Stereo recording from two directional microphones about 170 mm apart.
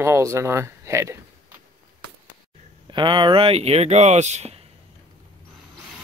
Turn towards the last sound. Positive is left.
turn(degrees=-40)  # may be behind; listen again after turning